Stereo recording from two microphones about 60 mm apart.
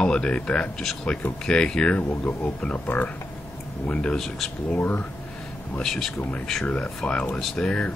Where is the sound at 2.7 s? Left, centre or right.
Left.